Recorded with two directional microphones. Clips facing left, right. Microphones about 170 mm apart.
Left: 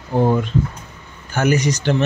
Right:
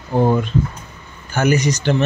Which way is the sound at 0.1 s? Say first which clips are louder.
Right 1 dB; 20° right (ahead or behind).